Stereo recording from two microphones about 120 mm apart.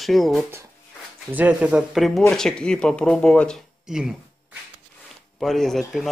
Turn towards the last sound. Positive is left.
turn(degrees=0)  # may be behind; listen again after turning